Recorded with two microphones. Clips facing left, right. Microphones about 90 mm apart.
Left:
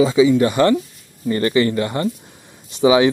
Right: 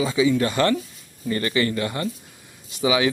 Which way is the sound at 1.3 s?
30° left (ahead or behind).